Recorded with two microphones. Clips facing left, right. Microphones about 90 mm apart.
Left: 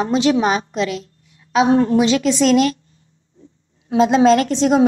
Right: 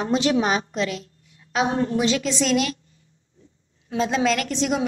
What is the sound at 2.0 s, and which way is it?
Speech, 65° left (ahead or behind).